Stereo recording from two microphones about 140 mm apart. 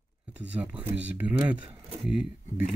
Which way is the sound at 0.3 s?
10° right (ahead or behind).